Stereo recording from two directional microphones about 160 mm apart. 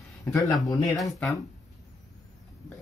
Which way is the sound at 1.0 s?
Centre (ahead or behind).